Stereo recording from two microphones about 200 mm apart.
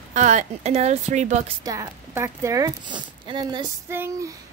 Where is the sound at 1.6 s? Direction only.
15° right (ahead or behind).